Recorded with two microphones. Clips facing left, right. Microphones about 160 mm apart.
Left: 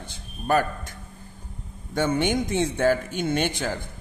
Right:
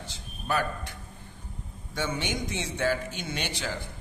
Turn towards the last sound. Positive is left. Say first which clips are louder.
# left 8 dB
turn(degrees=50)  # may be behind; listen again after turning